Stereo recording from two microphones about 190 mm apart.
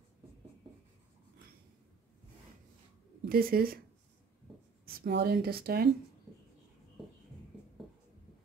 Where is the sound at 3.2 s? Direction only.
50° right (ahead or behind).